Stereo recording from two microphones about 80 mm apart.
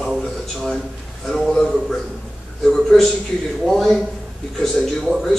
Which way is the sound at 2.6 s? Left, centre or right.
Centre.